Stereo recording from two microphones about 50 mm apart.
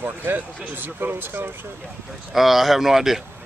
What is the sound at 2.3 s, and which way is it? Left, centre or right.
Speech, centre.